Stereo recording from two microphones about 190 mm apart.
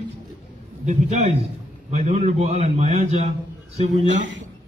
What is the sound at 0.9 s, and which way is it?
A man's voice, 35° right (ahead or behind).